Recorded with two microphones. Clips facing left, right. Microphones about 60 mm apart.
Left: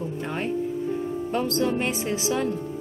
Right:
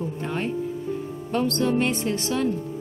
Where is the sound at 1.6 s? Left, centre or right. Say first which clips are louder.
Right 2 dB; centre.